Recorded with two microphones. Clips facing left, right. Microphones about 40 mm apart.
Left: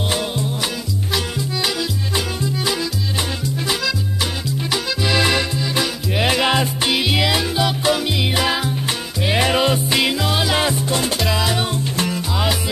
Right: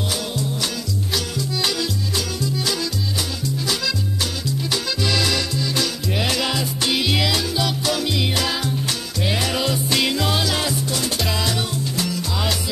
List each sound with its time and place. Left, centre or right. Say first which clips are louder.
2.1 s music: left 4 dB; left
4.6 s music: left 3 dB; centre
7.0 s music: left 2 dB; centre
9.8 s music: left 2 dB; centre
10.4 s music: left 4 dB; left